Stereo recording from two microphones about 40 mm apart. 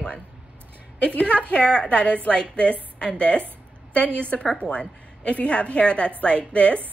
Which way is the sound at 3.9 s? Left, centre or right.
Left.